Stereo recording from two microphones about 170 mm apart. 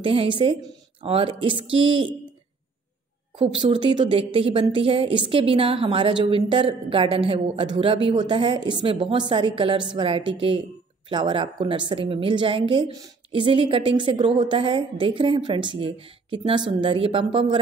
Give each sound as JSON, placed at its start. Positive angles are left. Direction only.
{"t": 0.0, "sound": "a woman's voice", "side_deg": -30}
{"t": 3.3, "sound": "a woman's voice", "side_deg": -30}